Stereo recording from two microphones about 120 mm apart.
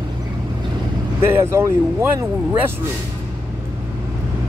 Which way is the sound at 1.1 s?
20° right (ahead or behind).